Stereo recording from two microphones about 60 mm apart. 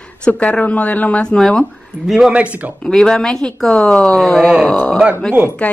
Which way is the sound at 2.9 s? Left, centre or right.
Centre.